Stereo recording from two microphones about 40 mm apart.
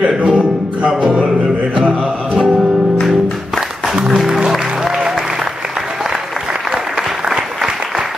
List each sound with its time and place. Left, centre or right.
0.0 s music: right
3.9 s music: centre
6.7 s applause: centre